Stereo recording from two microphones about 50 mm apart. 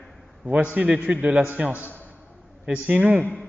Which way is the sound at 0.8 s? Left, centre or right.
Right.